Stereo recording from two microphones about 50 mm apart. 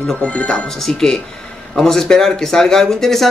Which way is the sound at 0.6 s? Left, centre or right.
Centre.